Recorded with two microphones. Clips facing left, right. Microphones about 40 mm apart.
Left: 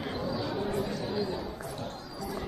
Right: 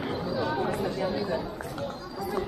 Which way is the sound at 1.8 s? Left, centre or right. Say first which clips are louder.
Right 4 dB; right.